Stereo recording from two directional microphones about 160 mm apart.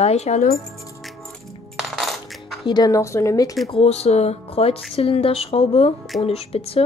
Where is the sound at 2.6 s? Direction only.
25° left (ahead or behind).